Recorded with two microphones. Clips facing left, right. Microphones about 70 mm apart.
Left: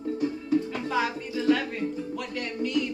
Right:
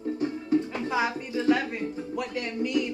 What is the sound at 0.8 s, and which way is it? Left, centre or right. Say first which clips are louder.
Music: even; centre.